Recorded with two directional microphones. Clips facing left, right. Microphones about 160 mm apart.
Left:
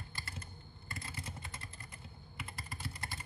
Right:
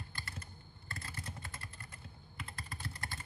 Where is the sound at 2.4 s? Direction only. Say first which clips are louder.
Even; 10° left (ahead or behind).